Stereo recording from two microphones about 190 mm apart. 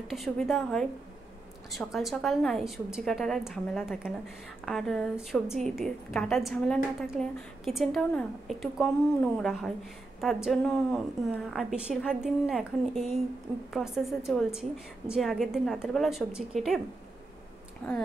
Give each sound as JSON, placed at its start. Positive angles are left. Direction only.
{"t": 0.1, "sound": "a woman's voice", "side_deg": 0}